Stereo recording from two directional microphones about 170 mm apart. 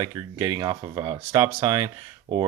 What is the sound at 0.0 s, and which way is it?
Speech, 20° right (ahead or behind).